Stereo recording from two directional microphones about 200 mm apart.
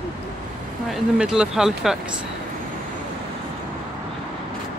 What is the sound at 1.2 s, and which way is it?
Speech, 5° right (ahead or behind).